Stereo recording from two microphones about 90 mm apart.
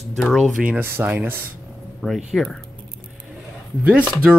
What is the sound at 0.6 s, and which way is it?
Speech, 20° right (ahead or behind).